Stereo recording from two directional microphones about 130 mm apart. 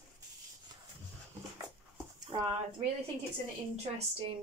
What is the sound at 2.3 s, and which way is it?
Speech, 45° right (ahead or behind).